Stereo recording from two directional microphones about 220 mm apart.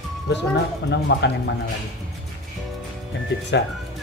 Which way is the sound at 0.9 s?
50° left (ahead or behind).